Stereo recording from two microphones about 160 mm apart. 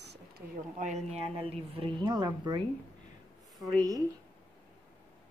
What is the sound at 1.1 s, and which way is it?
Speech, 35° right (ahead or behind).